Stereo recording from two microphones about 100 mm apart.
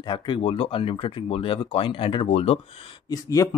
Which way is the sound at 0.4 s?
70° left (ahead or behind).